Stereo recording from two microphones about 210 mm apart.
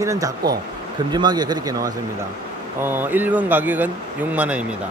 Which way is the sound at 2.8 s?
10° right (ahead or behind).